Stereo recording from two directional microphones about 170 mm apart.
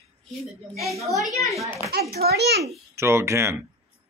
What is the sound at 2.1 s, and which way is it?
Speech, 70° right (ahead or behind).